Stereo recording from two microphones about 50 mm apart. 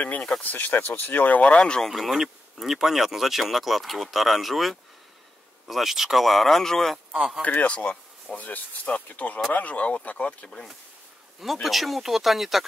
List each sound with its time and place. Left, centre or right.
0.4 s speech: left
1.4 s speech: left
1.9 s speech: centre
7.1 s speech: centre
7.4 s speech: left
11.6 s speech: centre